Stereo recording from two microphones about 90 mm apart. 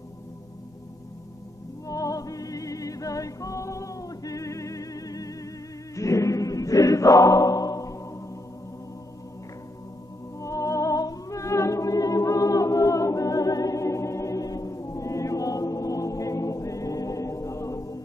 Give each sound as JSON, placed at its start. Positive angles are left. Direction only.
{"t": 1.9, "sound": "music", "side_deg": 40}
{"t": 5.9, "sound": "choir", "side_deg": 35}
{"t": 10.4, "sound": "music", "side_deg": 35}